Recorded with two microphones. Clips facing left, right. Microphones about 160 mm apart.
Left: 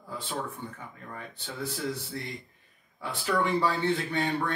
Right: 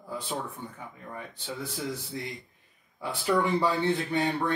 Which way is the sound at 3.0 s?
20° right (ahead or behind).